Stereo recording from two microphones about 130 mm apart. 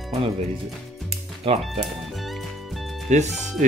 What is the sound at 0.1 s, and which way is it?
Speech, 50° right (ahead or behind).